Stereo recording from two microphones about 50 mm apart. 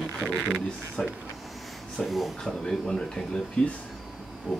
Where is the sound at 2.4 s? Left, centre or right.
Centre.